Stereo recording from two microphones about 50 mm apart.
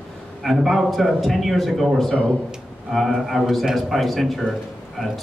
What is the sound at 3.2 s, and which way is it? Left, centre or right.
A man's voice, centre.